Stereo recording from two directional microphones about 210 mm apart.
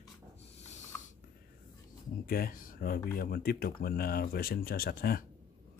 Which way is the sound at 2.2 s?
45° left (ahead or behind).